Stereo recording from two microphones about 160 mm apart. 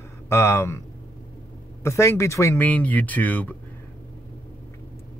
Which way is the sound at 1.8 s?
15° left (ahead or behind).